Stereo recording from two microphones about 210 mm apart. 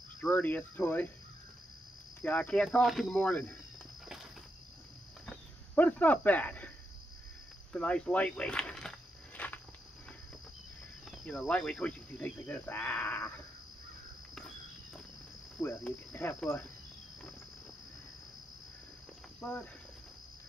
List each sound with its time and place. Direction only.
0.2 s speech: 10° left (ahead or behind)
2.2 s speech: 5° left (ahead or behind)
5.2 s cricket: 5° left (ahead or behind)
7.7 s speech: 5° left (ahead or behind)
9.4 s cricket: 5° left (ahead or behind)
11.1 s speech: centre (ahead or behind)
15.8 s speech: 5° left (ahead or behind)
19.4 s speech: 5° left (ahead or behind)